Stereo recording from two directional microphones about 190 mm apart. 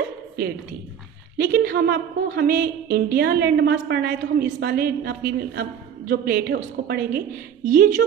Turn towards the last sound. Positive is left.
turn(degrees=-45)  # may be behind; listen again after turning